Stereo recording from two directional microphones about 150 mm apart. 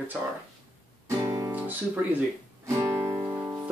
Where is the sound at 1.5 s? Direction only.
10° right (ahead or behind).